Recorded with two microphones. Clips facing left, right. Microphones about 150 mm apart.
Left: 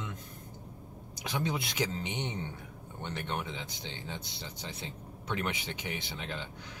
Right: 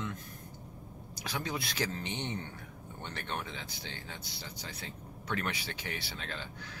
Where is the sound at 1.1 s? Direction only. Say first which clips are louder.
Left 3 dB; 20° left (ahead or behind).